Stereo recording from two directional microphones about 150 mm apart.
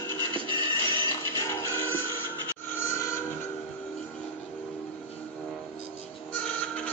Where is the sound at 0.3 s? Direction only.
35° right (ahead or behind).